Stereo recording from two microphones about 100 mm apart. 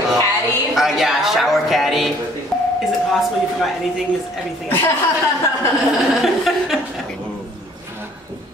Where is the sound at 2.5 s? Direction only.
5° left (ahead or behind).